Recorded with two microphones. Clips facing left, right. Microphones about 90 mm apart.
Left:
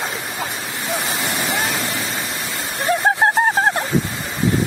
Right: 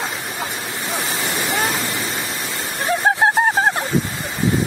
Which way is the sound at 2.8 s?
Centre (ahead or behind).